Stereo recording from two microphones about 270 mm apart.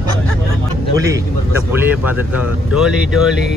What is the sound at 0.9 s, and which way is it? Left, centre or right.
Speech, centre.